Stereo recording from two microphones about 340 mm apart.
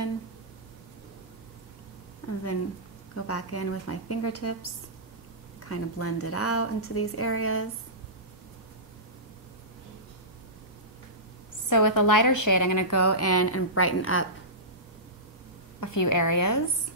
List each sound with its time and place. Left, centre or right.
3.2 s a woman's voice: left
5.7 s a woman's voice: left
11.7 s a woman's voice: left
15.8 s a woman's voice: left